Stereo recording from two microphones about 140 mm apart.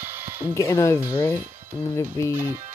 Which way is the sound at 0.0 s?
15° right (ahead or behind).